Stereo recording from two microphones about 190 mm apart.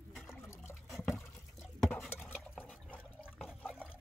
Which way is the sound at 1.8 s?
10° left (ahead or behind).